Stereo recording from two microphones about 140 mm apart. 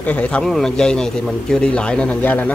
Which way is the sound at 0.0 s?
10° left (ahead or behind).